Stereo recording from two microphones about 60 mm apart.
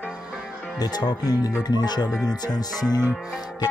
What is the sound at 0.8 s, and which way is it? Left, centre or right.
Speech, left.